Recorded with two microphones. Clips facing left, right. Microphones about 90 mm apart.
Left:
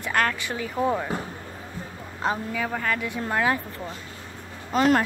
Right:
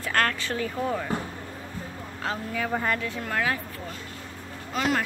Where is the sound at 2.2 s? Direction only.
20° left (ahead or behind).